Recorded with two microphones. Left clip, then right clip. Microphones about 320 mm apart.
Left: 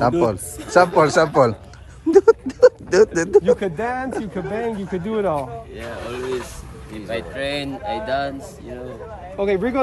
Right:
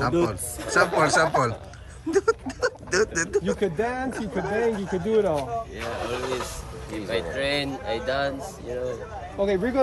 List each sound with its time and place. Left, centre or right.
0.0 s speech: centre
7.1 s speech: centre
9.4 s speech: centre